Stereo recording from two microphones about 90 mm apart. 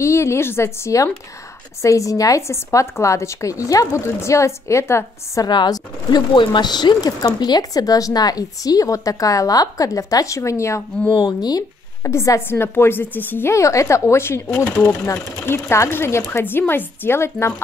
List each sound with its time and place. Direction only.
0.0 s a woman's voice: 30° left (ahead or behind)
5.4 s speech: 50° left (ahead or behind); by 10.8 s 35° left (ahead or behind)
11.1 s speech: 50° left (ahead or behind)
12.0 s speech: 30° left (ahead or behind)
14.5 s speech: 15° left (ahead or behind)
14.9 s speech: 25° left (ahead or behind)